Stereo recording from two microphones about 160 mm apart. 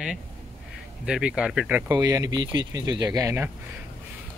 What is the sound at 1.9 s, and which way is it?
Speech, 25° right (ahead or behind).